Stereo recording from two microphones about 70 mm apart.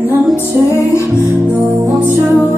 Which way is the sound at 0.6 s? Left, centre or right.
Left.